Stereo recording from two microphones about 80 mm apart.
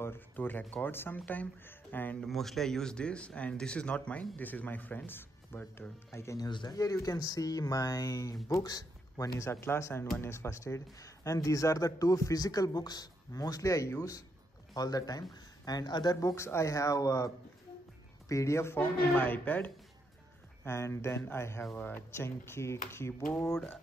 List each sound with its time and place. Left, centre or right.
0.0 s speech: left
2.1 s speech: centre; by 6.4 s left
6.4 s speech: left
6.7 s speech: left
16.2 s speech: left
18.3 s speech: left
19.1 s speech: left
20.6 s speech: left
21.7 s speech: left